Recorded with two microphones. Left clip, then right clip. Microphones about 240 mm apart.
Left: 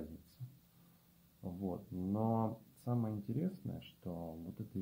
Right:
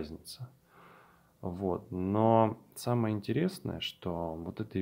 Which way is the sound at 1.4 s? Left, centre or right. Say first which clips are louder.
Right 10 dB; right.